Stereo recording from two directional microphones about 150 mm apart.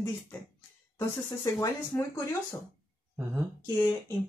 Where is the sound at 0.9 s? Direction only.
25° left (ahead or behind).